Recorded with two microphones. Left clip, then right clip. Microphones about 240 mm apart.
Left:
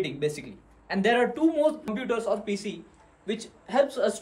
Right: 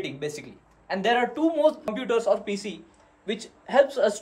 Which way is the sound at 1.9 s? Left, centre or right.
Right.